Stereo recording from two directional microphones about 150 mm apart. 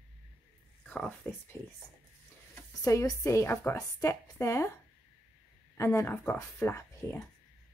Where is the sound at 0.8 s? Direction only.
10° left (ahead or behind).